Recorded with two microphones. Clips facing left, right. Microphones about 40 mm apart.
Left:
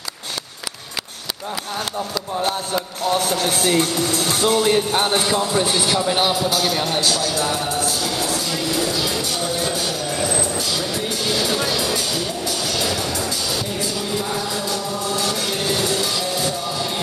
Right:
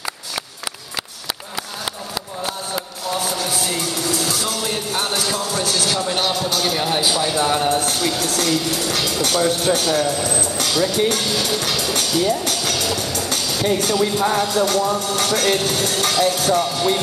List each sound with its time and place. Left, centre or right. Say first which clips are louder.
3.1 s speech: left 3 dB; left; by 6.9 s centre
6.9 s speech: right 1 dB; centre; by 8.3 s right
8.4 s music: right 2 dB; right
12.9 s speech: even; left
13.3 s music: right 4 dB; right